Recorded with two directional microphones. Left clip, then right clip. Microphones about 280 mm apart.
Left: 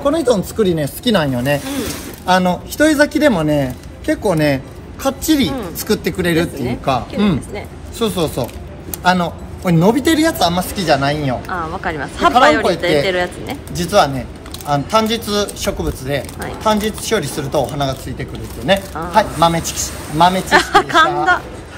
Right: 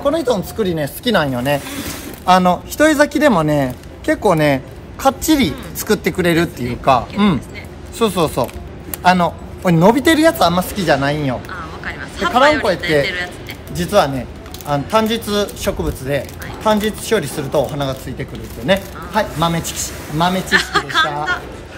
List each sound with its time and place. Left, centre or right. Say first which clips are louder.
0.0 s speech: left 2 dB; right; by 11.3 s centre
11.4 s a man's voice: left 6 dB; centre
13.7 s a man's voice: left 1 dB; centre